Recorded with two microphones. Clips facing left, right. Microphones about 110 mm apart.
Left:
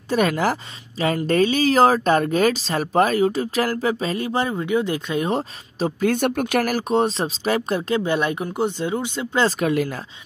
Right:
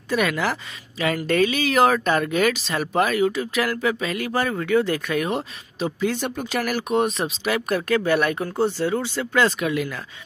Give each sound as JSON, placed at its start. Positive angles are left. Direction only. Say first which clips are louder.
{"t": 0.1, "sound": "speech", "louder": "left 3 dB", "side_deg": 35}
{"t": 5.9, "sound": "speech", "louder": "left 6 dB", "side_deg": 50}
{"t": 9.4, "sound": "speech", "louder": "left 2 dB", "side_deg": 40}